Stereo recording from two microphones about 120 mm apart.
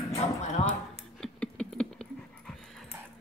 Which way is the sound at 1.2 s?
5° left (ahead or behind).